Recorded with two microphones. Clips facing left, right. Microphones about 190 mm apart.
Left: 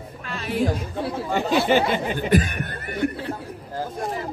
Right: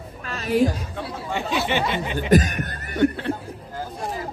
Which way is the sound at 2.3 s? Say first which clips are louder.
Right 4 dB; 40° right (ahead or behind).